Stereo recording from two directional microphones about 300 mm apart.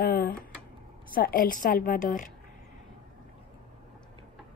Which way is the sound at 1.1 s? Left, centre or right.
Left.